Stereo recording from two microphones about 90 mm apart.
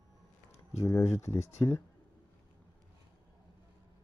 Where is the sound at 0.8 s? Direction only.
35° left (ahead or behind).